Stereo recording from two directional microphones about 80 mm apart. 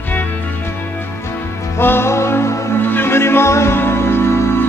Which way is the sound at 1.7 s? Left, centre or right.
Left.